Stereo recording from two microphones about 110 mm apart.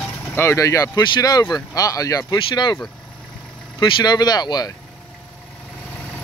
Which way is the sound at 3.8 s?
40° left (ahead or behind).